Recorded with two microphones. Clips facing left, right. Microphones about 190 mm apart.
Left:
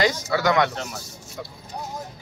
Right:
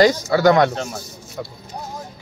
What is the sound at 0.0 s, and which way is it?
Speech, 35° right (ahead or behind).